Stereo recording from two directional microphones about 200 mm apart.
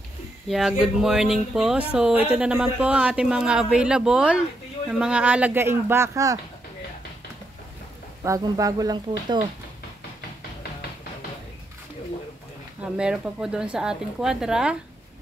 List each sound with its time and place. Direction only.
0.5 s speech: centre (ahead or behind)
8.2 s speech: 15° right (ahead or behind)
12.8 s speech: 5° right (ahead or behind)